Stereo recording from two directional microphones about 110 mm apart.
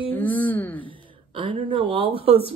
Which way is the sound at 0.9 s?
50° right (ahead or behind).